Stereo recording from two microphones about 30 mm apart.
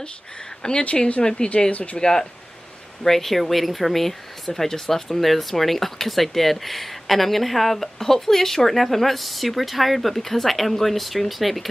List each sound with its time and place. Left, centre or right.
0.6 s speech: left
0.9 s speech: left
1.7 s speech: left
2.0 s speech: left
3.0 s speech: centre